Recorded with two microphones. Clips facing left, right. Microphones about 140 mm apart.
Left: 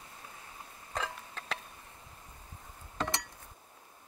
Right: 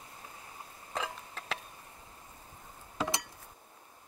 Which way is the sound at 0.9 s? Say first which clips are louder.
Even; 5° right (ahead or behind).